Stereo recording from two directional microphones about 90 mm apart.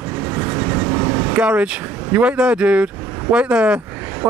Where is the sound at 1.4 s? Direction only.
15° right (ahead or behind).